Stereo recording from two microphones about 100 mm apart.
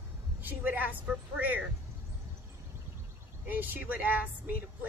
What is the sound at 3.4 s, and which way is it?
Speech, 20° right (ahead or behind).